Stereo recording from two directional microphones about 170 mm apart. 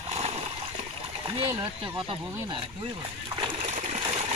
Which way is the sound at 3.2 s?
30° right (ahead or behind).